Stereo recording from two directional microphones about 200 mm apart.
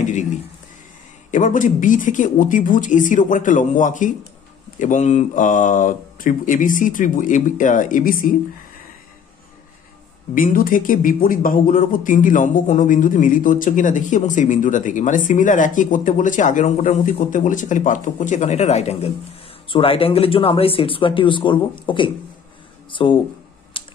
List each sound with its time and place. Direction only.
1.3 s speech: 40° left (ahead or behind)
10.3 s speech: 45° left (ahead or behind); by 23.1 s 25° left (ahead or behind)
23.8 s a sound: 25° left (ahead or behind)